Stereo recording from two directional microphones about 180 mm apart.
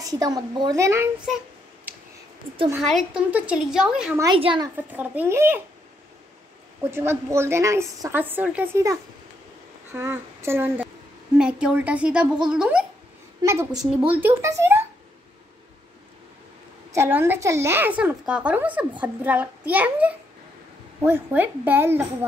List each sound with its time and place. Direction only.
0.0 s a woman's voice: 20° right (ahead or behind)
2.8 s speech: centre (ahead or behind)
4.2 s a woman's voice: 25° right (ahead or behind)
4.9 s a woman's voice: 10° right (ahead or behind)
6.8 s a woman's voice: 15° right (ahead or behind)
9.9 s a woman's voice: 15° right (ahead or behind)
13.4 s a woman's voice: 20° right (ahead or behind)
16.9 s a woman's voice: 15° right (ahead or behind)